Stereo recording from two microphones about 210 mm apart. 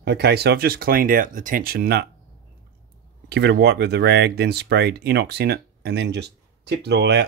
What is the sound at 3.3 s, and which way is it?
Speech, 50° right (ahead or behind).